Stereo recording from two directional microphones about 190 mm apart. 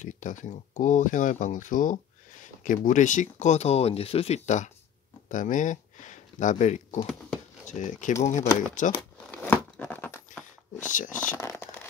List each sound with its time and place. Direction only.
0.0 s speech: 40° left (ahead or behind)
9.3 s tearing: 10° left (ahead or behind)
10.9 s speech: 45° left (ahead or behind)
11.1 s speech: 15° left (ahead or behind)